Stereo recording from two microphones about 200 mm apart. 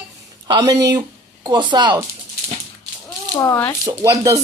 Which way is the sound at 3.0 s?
10° left (ahead or behind).